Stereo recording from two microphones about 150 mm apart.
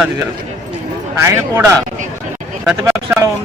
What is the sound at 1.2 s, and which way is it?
Speech, 15° right (ahead or behind).